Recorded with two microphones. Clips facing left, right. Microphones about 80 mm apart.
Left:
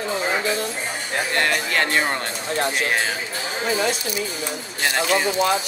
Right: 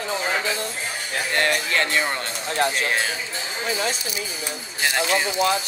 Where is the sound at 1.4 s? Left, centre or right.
Left.